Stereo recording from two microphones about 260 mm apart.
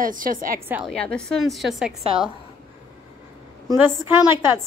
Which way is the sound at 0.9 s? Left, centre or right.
Centre.